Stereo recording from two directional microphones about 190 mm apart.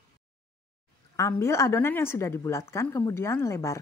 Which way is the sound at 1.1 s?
15° left (ahead or behind).